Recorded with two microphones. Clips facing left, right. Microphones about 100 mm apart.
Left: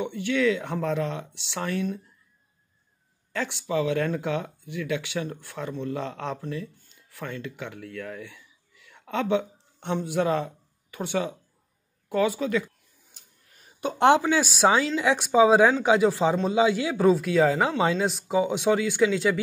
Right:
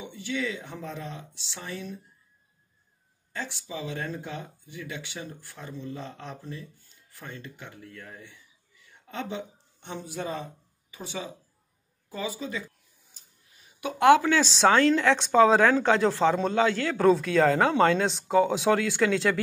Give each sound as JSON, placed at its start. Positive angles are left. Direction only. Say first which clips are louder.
{"t": 0.0, "sound": "speech", "louder": "left 8 dB", "side_deg": 60}
{"t": 3.3, "sound": "speech", "louder": "left 9 dB", "side_deg": 70}
{"t": 12.1, "sound": "a sound", "louder": "left 9 dB", "side_deg": 65}
{"t": 13.7, "sound": "speech", "louder": "right 1 dB", "side_deg": 30}
{"t": 14.4, "sound": "a man's voice", "louder": "right 1 dB", "side_deg": 10}